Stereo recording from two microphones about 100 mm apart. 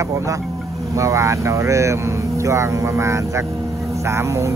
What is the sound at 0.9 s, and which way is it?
Speech, 30° right (ahead or behind).